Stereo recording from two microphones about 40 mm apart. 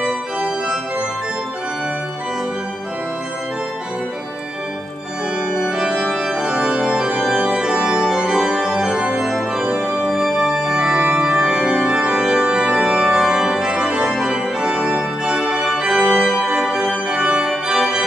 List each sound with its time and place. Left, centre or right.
5.5 s organ: centre
9.8 s music: centre
10.5 s organ: centre